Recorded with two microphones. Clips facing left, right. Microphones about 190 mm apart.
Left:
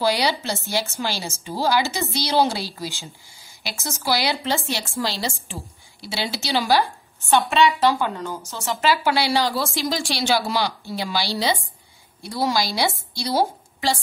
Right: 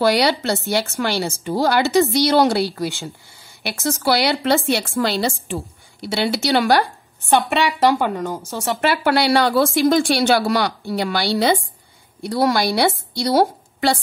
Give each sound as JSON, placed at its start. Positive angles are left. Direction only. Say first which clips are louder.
{"t": 0.0, "sound": "a woman's voice", "louder": "right 5 dB", "side_deg": -65}